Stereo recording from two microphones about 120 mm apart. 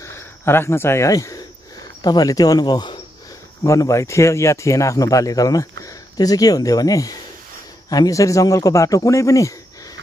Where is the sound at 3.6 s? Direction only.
25° left (ahead or behind).